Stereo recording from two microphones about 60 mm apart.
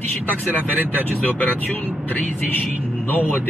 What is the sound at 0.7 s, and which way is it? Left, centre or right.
Speech, left.